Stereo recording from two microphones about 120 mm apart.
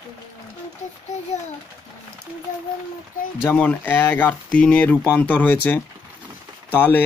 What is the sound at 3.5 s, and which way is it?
Speech, 15° left (ahead or behind).